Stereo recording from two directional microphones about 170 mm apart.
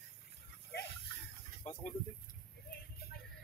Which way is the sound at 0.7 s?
65° left (ahead or behind).